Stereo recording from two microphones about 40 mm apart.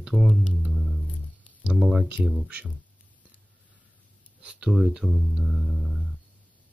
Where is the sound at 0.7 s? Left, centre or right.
Centre.